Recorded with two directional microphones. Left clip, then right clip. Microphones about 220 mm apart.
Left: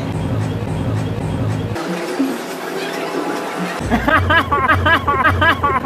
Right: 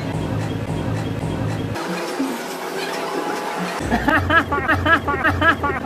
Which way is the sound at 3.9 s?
30° left (ahead or behind).